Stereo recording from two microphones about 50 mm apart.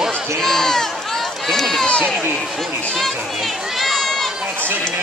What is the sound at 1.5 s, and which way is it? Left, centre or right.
Run, centre.